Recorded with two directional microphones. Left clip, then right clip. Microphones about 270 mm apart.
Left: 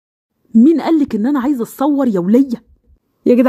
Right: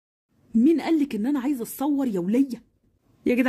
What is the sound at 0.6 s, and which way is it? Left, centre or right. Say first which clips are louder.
A woman's voice: left 9 dB; centre.